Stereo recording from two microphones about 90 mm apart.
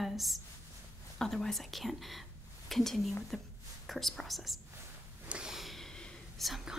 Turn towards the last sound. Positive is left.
turn(degrees=5)  # may be behind; listen again after turning